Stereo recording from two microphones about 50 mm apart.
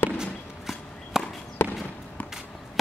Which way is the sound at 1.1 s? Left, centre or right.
Centre.